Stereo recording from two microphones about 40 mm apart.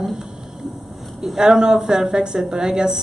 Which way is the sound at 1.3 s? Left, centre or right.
Centre.